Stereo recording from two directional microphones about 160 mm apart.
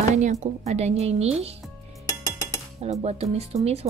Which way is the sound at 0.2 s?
45° right (ahead or behind).